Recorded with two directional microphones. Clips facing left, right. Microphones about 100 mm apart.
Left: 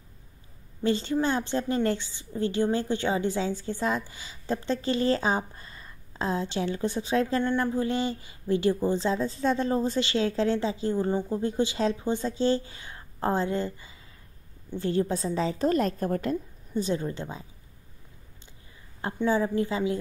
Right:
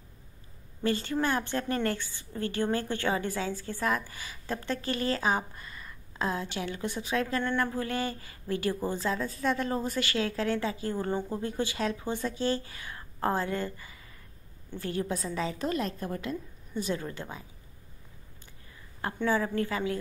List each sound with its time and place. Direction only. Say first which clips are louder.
0.8 s a woman's voice: left 3 dB; 25° left (ahead or behind)
7.4 s a woman's voice: left 4 dB; 20° left (ahead or behind)
19.2 s a woman's voice: left 3 dB; 25° left (ahead or behind)